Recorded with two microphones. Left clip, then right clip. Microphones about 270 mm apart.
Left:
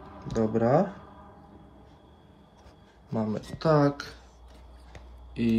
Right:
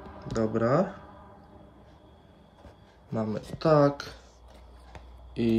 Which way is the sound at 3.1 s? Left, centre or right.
Centre.